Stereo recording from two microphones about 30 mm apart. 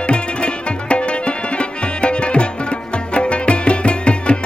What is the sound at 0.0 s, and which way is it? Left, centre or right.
Music, left.